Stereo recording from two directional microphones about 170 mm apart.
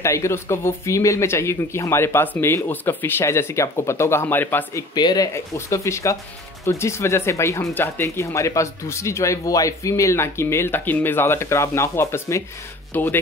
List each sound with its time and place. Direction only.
0.0 s speech: 15° left (ahead or behind)
4.9 s speech: 25° left (ahead or behind)